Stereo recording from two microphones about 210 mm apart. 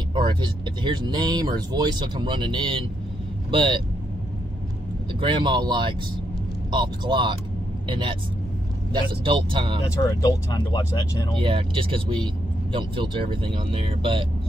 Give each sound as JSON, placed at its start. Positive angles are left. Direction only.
{"t": 0.1, "sound": "speech", "side_deg": -20}
{"t": 5.2, "sound": "speech", "side_deg": -20}
{"t": 10.0, "sound": "speech", "side_deg": 20}
{"t": 11.3, "sound": "speech", "side_deg": -25}